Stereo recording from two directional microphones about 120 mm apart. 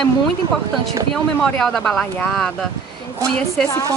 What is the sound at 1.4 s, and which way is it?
Speech, 5° left (ahead or behind).